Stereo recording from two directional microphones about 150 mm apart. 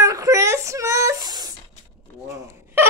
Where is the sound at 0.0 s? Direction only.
20° right (ahead or behind).